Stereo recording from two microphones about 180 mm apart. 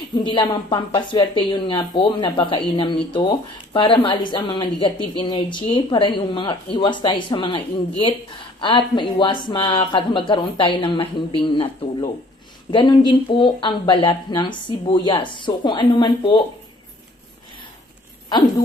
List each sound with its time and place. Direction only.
0.1 s speech: 30° left (ahead or behind)